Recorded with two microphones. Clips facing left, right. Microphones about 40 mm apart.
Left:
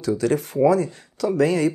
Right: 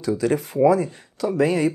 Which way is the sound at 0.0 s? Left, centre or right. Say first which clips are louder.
Even; right.